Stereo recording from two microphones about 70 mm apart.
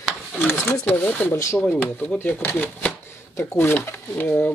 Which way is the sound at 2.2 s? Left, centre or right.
Left.